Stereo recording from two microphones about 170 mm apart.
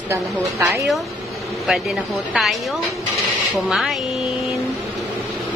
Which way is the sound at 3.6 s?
Centre (ahead or behind).